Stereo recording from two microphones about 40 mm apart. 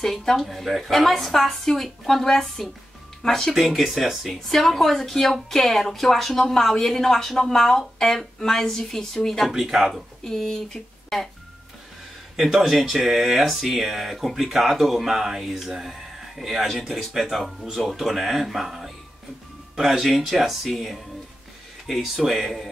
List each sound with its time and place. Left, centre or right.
0.0 s a woman's voice: centre
9.5 s speech: centre
10.2 s speech: centre
12.4 s speech: centre